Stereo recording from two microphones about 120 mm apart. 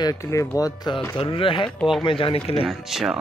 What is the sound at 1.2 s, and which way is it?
Speech, 45° left (ahead or behind).